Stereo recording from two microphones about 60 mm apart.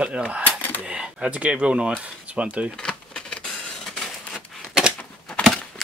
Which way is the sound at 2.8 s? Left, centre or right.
Centre.